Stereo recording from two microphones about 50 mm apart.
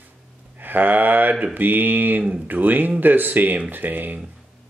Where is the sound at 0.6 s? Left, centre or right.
Right.